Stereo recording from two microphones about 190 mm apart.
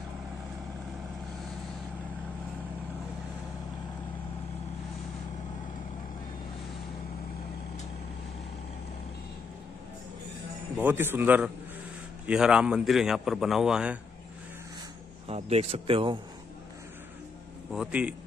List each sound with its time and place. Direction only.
10.8 s a man's voice: 10° right (ahead or behind)
15.2 s a man's voice: 35° right (ahead or behind)
17.7 s a man's voice: 5° right (ahead or behind)